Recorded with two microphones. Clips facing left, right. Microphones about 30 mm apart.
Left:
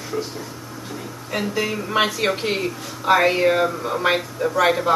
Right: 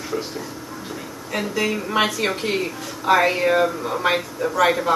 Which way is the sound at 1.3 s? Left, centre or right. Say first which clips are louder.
Right 1 dB; centre.